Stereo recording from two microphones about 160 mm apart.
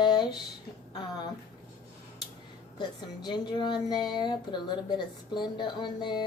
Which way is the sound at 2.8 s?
25° left (ahead or behind).